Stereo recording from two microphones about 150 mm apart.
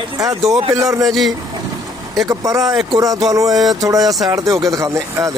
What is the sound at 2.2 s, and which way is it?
Speech, 20° right (ahead or behind).